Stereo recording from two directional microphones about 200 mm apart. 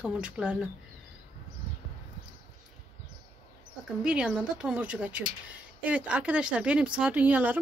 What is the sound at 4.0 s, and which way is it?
Speech, 5° right (ahead or behind).